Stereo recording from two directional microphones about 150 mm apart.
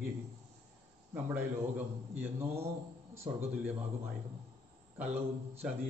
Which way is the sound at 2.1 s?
15° right (ahead or behind).